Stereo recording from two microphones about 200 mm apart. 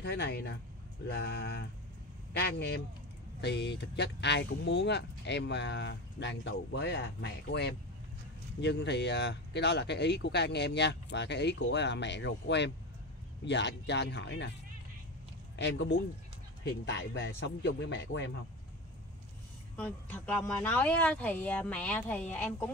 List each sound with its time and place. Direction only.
0.0 s speech: 55° left (ahead or behind)
15.5 s speech: 60° left (ahead or behind)
19.8 s speech: 5° left (ahead or behind)